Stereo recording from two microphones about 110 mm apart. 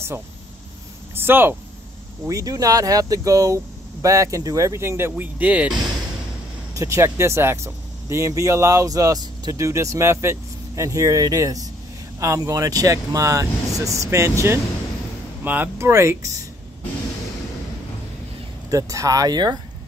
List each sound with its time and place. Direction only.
1.1 s speech: 20° right (ahead or behind)
2.2 s speech: 35° right (ahead or behind); by 5.8 s 15° right (ahead or behind)
6.7 s speech: 25° right (ahead or behind)
18.7 s speech: 30° right (ahead or behind)